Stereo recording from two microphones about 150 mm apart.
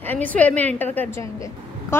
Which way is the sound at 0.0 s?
10° left (ahead or behind).